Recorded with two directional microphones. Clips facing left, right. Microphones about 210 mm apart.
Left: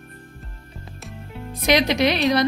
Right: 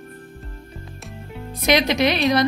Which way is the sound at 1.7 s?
35° left (ahead or behind).